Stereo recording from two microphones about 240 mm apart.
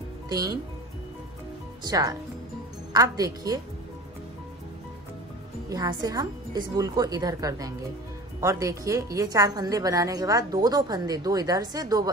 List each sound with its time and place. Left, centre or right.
0.3 s a woman's voice: centre
1.9 s a woman's voice: centre
5.7 s a woman's voice: centre